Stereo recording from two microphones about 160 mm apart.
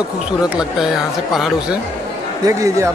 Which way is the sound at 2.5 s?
20° right (ahead or behind).